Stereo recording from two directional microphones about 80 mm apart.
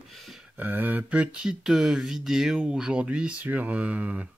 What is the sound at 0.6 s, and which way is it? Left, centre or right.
Speech, right.